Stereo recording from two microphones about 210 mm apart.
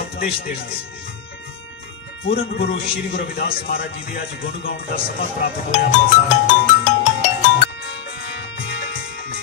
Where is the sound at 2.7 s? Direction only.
40° left (ahead or behind).